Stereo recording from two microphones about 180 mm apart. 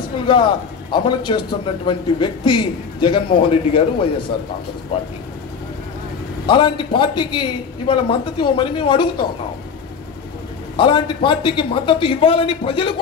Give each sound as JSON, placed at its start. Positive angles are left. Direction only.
{"t": 0.9, "sound": "a man's voice", "side_deg": 25}
{"t": 6.4, "sound": "a man's voice", "side_deg": 25}
{"t": 10.8, "sound": "a man's voice", "side_deg": 25}